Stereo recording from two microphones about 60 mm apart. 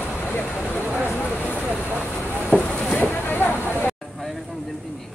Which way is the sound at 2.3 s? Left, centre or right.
Left.